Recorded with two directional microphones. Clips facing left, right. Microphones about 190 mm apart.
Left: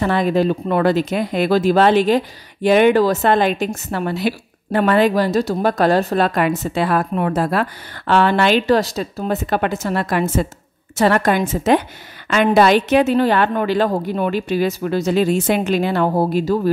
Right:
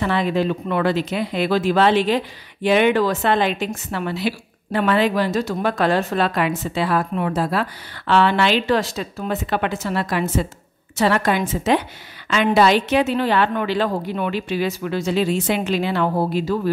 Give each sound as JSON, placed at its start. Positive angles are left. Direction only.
{"t": 0.0, "sound": "speech", "side_deg": 45}